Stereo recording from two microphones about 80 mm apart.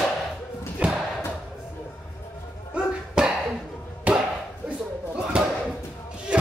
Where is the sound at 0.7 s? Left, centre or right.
Centre.